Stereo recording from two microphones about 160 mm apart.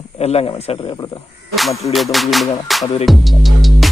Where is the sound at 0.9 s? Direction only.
25° left (ahead or behind).